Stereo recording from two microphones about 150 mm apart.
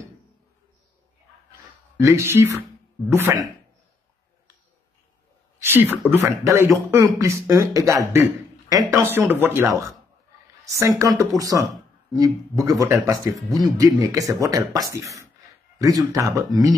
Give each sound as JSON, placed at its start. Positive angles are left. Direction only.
{"t": 2.0, "sound": "speech", "side_deg": -20}
{"t": 5.6, "sound": "speech", "side_deg": -15}
{"t": 10.6, "sound": "a sound", "side_deg": -20}
{"t": 11.0, "sound": "speech", "side_deg": -20}